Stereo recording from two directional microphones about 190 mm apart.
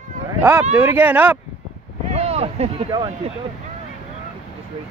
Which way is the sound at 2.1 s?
35° right (ahead or behind).